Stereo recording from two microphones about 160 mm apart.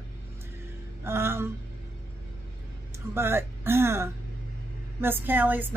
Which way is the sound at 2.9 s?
15° right (ahead or behind).